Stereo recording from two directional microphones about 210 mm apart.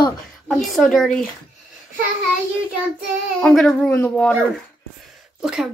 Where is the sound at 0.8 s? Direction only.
Centre (ahead or behind).